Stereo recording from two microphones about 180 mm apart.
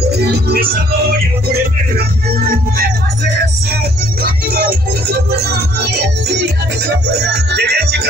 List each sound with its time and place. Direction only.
0.1 s speech: 65° right (ahead or behind)
4.2 s music: 55° right (ahead or behind)